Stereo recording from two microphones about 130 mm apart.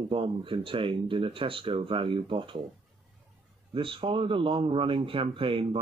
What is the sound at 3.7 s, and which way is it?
Speech, 45° right (ahead or behind).